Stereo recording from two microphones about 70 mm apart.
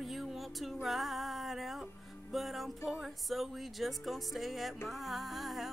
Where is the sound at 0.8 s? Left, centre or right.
Centre.